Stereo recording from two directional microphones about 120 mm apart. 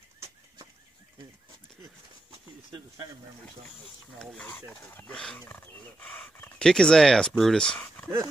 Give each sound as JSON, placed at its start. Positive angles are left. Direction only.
{"t": 4.5, "sound": "speech", "side_deg": 15}
{"t": 5.1, "sound": "speech", "side_deg": 5}
{"t": 5.4, "sound": "speech", "side_deg": 20}
{"t": 6.6, "sound": "speech", "side_deg": 5}